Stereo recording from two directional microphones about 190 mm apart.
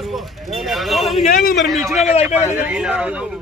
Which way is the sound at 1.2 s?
50° left (ahead or behind).